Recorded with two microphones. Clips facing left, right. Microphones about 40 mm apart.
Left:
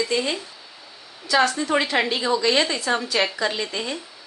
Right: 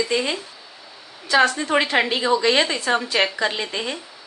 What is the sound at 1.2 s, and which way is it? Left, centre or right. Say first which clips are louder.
A woman's voice: right 2 dB; right.